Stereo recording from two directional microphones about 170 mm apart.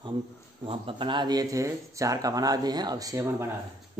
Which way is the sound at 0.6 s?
30° right (ahead or behind).